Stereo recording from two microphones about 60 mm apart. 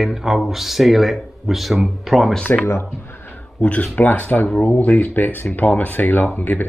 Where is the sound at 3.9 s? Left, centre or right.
Left.